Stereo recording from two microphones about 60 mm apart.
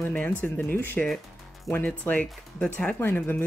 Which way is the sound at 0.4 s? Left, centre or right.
Left.